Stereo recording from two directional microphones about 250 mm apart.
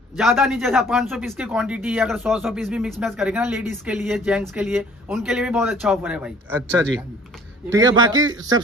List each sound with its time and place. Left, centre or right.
0.2 s speech: centre
7.7 s a man's voice: centre